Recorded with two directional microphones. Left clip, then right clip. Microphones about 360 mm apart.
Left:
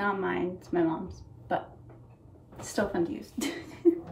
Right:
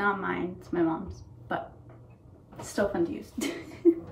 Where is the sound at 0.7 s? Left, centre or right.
Centre.